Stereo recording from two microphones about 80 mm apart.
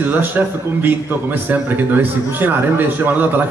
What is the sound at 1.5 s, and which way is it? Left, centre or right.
A man's voice, right.